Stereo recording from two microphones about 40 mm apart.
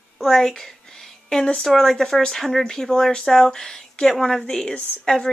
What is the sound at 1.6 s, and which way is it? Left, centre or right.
A woman's voice, centre.